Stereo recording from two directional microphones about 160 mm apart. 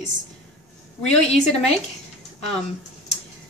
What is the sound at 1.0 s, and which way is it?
Speech, 45° left (ahead or behind).